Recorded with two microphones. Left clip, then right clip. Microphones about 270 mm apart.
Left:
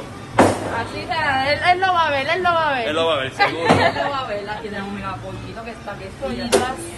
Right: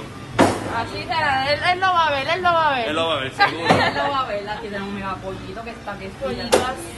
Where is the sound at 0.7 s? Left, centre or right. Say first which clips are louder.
Even; centre.